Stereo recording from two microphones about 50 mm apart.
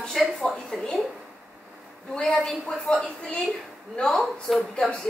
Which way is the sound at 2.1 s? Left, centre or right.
Centre.